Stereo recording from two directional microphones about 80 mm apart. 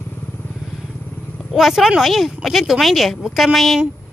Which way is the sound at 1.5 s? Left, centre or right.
Centre.